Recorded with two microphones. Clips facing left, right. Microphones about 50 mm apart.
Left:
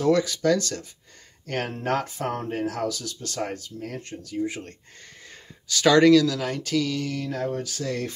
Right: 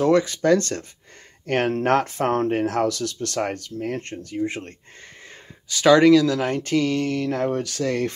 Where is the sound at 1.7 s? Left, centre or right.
Right.